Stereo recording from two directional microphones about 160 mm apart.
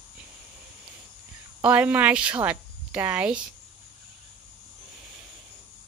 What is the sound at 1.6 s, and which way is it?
Speech, 10° right (ahead or behind).